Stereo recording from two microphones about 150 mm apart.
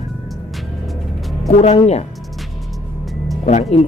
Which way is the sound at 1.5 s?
45° left (ahead or behind).